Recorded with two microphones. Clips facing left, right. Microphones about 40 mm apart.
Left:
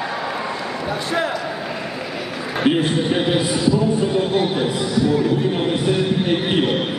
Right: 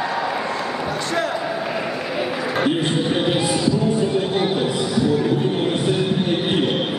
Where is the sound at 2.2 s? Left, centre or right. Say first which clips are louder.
Right 4 dB; centre.